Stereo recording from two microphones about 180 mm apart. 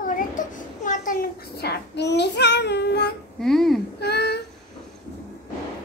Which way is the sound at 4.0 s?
65° left (ahead or behind).